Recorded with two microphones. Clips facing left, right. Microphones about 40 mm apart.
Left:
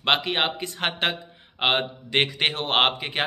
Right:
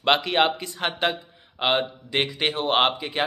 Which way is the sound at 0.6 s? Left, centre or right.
Left.